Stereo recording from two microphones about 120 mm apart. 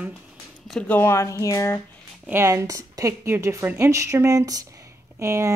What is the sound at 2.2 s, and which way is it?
Speech, 20° right (ahead or behind).